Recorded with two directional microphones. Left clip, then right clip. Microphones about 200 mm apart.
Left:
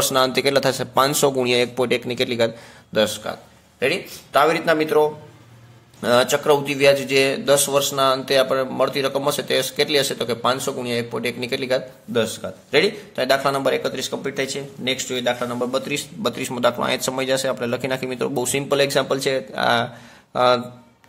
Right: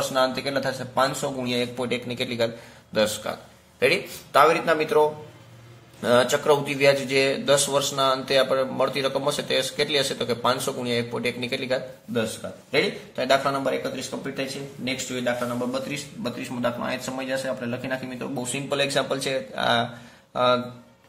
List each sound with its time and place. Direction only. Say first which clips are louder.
0.1 s speech: left 7 dB; 40° left (ahead or behind)
3.3 s a man's voice: left 2 dB; 10° left (ahead or behind)